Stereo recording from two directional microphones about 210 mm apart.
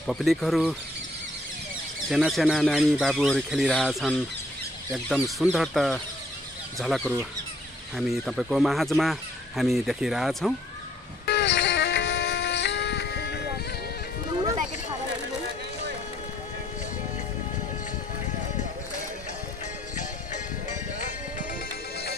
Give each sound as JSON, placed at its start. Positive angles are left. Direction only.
{"t": 0.0, "sound": "speech", "side_deg": 0}
{"t": 2.0, "sound": "speech", "side_deg": 0}
{"t": 11.2, "sound": "music", "side_deg": 55}